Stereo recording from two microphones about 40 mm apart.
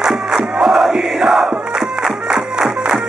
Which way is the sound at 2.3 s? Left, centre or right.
Right.